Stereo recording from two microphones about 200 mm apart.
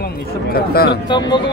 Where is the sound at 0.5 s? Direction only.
50° left (ahead or behind).